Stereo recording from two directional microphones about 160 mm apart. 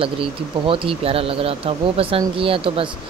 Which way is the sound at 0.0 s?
35° right (ahead or behind).